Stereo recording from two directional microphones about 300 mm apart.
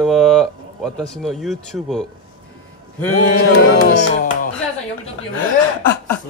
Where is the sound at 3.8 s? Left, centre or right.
Left.